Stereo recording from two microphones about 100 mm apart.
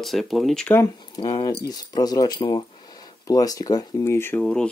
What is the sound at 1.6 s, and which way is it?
Speech, 40° left (ahead or behind).